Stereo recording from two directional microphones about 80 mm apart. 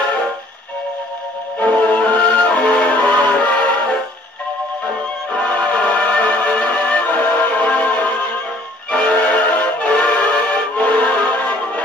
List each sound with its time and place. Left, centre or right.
1.6 s music: centre